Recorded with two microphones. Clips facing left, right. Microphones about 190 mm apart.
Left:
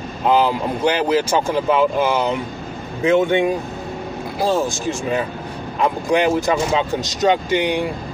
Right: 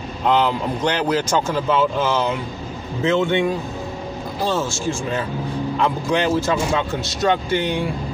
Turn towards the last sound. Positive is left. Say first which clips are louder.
# left 2 dB
turn(degrees=15)  # may be behind; listen again after turning